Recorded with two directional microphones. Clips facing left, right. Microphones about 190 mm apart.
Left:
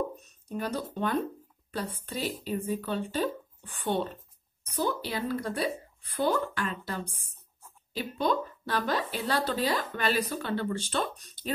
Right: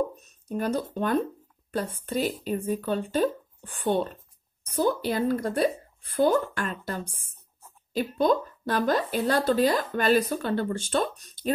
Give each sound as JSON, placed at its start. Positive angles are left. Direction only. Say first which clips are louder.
{"t": 0.6, "sound": "speech", "louder": "right 4 dB", "side_deg": -45}